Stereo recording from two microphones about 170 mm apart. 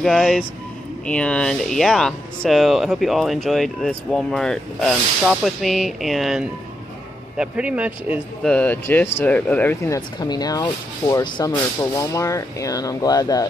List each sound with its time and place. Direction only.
0.0 s speech: centre (ahead or behind)
8.5 s speech: 10° left (ahead or behind)
9.9 s speech: 25° left (ahead or behind)